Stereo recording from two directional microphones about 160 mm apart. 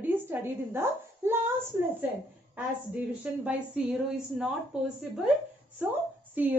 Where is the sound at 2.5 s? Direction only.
10° right (ahead or behind).